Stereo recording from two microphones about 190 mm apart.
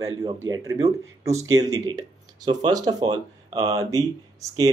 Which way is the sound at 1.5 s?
20° right (ahead or behind).